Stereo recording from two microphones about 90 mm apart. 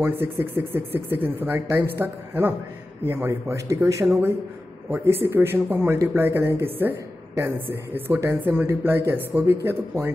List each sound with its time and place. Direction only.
0.0 s speech: 25° right (ahead or behind)